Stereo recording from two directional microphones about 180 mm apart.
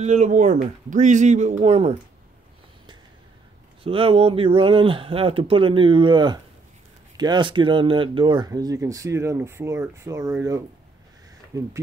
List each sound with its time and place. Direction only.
0.0 s speech: 40° right (ahead or behind)
3.8 s speech: 30° right (ahead or behind)